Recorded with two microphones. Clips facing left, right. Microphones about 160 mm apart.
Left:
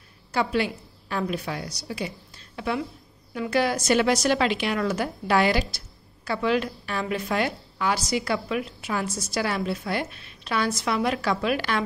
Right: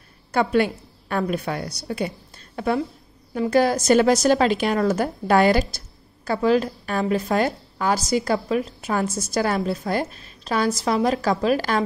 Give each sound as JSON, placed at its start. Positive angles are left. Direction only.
{"t": 0.3, "sound": "a woman's voice", "side_deg": -50}